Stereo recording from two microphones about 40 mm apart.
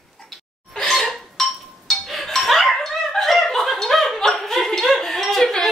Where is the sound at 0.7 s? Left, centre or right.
Centre.